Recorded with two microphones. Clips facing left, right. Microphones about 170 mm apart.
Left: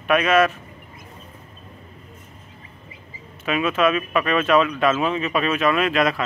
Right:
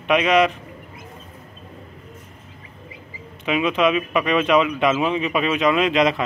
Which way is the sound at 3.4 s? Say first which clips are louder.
Right 1 dB; 15° right (ahead or behind).